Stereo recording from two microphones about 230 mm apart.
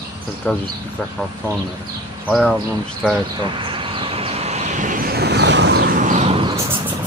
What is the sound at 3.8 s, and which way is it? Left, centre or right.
Vehicle, right.